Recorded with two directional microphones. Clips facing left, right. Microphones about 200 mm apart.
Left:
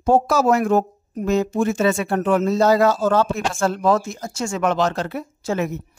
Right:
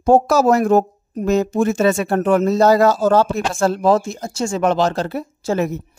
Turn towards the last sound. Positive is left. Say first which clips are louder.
# right 3 dB
turn(degrees=-35)  # may be behind; listen again after turning